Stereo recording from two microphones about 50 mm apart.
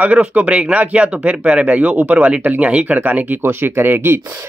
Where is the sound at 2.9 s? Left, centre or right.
Right.